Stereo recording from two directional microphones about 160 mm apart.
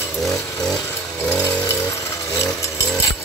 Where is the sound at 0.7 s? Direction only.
20° left (ahead or behind).